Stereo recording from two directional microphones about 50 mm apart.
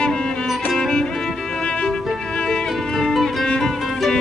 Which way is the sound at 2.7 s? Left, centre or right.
Centre.